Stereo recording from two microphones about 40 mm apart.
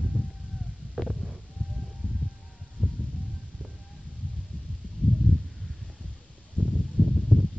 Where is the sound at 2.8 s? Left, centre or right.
Centre.